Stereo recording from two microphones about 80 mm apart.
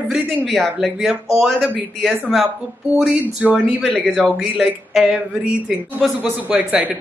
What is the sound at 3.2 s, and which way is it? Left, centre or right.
Speech, centre.